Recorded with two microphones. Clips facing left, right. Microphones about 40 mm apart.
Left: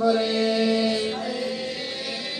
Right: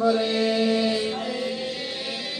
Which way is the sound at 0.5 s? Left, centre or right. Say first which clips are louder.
Even; right.